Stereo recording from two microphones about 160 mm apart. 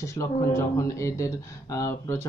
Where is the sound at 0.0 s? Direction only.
20° left (ahead or behind).